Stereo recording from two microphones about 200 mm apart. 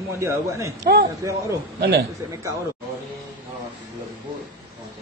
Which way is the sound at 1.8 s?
55° right (ahead or behind).